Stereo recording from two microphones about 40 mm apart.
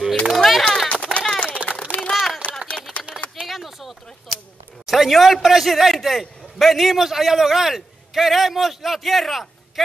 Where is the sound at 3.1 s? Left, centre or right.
Right.